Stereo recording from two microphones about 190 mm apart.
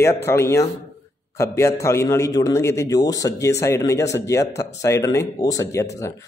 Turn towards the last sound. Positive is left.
turn(degrees=15)  # may be behind; listen again after turning